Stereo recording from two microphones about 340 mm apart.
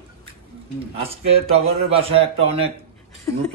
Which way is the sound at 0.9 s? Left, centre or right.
Centre.